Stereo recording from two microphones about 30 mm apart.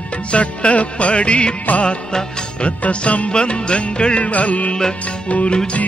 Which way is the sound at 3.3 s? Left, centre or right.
Left.